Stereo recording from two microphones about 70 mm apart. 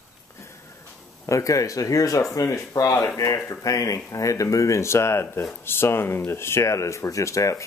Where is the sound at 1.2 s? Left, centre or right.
Left.